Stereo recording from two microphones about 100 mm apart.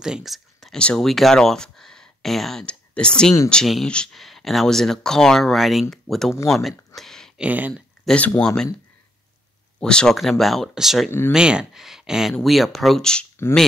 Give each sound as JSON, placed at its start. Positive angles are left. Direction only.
{"t": 0.0, "sound": "speech", "side_deg": -5}
{"t": 7.0, "sound": "a sound", "side_deg": 5}
{"t": 7.3, "sound": "speech", "side_deg": -15}
{"t": 8.0, "sound": "speech", "side_deg": 10}
{"t": 9.8, "sound": "speech", "side_deg": 10}
{"t": 11.1, "sound": "speech", "side_deg": 25}
{"t": 11.3, "sound": "speech", "side_deg": -10}